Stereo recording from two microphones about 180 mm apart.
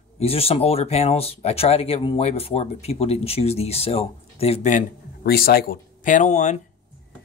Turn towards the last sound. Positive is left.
turn(degrees=40)  # may be behind; listen again after turning